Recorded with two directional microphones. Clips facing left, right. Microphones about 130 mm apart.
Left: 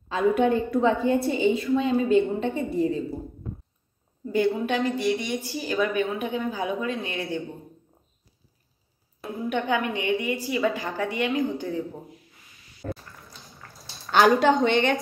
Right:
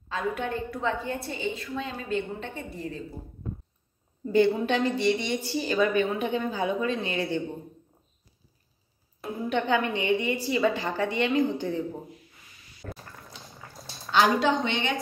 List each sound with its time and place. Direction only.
0.1 s a woman's voice: 15° left (ahead or behind)
4.2 s a woman's voice: centre (ahead or behind)
9.2 s a woman's voice: centre (ahead or behind)
12.8 s a sound: 25° left (ahead or behind)
14.1 s a woman's voice: 50° left (ahead or behind)